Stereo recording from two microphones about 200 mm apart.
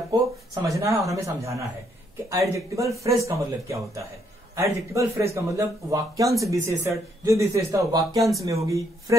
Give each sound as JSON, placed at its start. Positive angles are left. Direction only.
{"t": 0.1, "sound": "a man's voice", "side_deg": -15}